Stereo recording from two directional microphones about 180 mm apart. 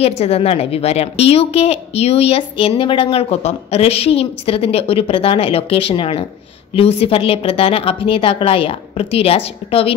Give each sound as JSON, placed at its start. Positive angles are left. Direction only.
{"t": 0.0, "sound": "a woman's voice", "side_deg": 35}